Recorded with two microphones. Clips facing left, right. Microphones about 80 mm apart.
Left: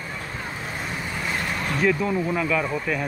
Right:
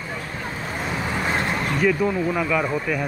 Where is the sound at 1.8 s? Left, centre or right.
Centre.